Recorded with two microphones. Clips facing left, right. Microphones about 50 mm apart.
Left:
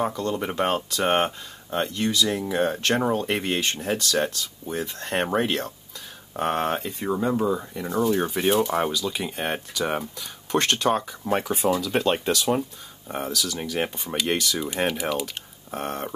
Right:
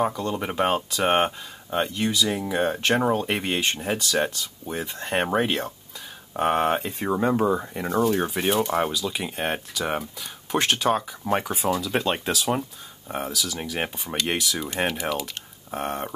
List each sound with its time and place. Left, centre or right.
0.0 s speech: centre
7.0 s speech: right
8.1 s speech: centre